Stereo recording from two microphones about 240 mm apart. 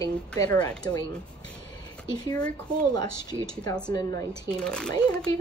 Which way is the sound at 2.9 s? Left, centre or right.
Centre.